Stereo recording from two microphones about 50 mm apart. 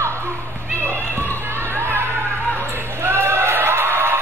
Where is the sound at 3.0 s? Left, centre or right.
Right.